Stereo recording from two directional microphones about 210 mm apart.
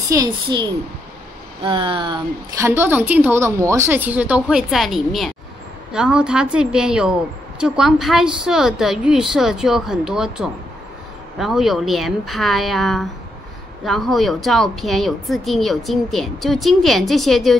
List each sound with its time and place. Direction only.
0.1 s a woman's voice: 20° right (ahead or behind); by 17.6 s centre (ahead or behind)